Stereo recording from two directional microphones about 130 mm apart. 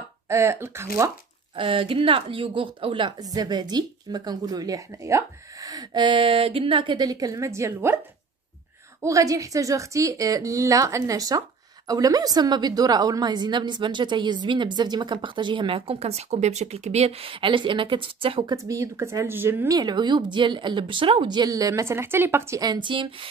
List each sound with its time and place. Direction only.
0.3 s a woman's voice: 20° right (ahead or behind)
1.6 s a woman's voice: 40° right (ahead or behind); by 8.0 s 20° right (ahead or behind)
9.0 s a woman's voice: 25° right (ahead or behind)
19.8 s a woman's voice: 35° right (ahead or behind)
22.6 s a woman's voice: 35° right (ahead or behind)